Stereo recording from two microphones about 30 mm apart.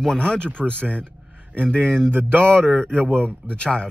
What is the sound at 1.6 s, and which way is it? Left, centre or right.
A man's voice, left.